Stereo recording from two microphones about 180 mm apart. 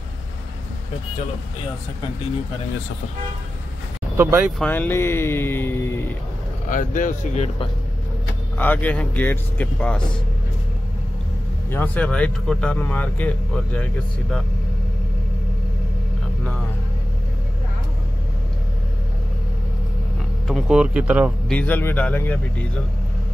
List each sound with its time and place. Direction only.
4.2 s speech: 15° right (ahead or behind)
4.6 s speech: 10° left (ahead or behind)
6.7 s speech: 45° left (ahead or behind)
8.5 s speech: 10° left (ahead or behind)
11.7 s speech: 10° left (ahead or behind)
20.4 s speech: 5° right (ahead or behind)
21.5 s speech: 10° left (ahead or behind)